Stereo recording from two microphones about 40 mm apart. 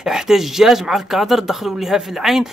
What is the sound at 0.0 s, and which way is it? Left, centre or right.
Speech, centre.